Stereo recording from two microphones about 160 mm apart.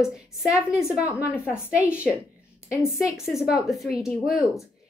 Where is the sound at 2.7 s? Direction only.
20° left (ahead or behind).